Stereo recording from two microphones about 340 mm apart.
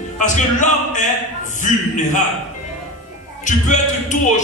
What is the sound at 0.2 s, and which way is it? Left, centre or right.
Speech, left.